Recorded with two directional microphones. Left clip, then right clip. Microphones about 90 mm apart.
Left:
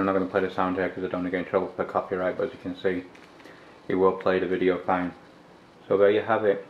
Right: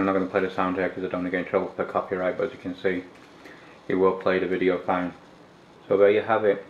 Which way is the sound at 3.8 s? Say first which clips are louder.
Right 1 dB; 5° left (ahead or behind).